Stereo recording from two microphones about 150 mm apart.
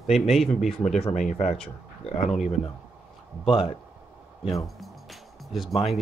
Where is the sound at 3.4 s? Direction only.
35° left (ahead or behind).